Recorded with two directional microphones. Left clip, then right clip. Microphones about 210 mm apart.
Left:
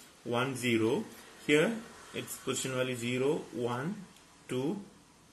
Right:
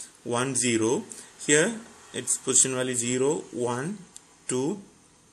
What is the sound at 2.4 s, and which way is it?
Speech, 55° right (ahead or behind).